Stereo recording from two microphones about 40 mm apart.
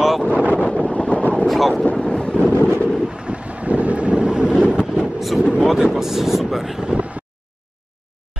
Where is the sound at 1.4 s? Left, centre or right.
Centre.